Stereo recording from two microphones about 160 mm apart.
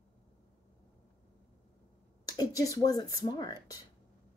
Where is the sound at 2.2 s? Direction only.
20° left (ahead or behind).